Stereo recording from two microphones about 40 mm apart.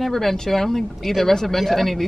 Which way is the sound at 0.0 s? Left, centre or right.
Centre.